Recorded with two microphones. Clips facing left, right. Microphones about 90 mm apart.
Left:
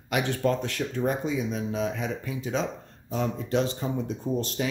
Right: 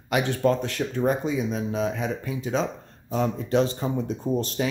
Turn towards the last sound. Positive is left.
turn(degrees=-45)  # may be behind; listen again after turning